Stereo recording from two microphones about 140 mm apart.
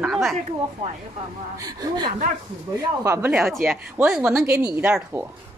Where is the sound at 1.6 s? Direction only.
30° right (ahead or behind).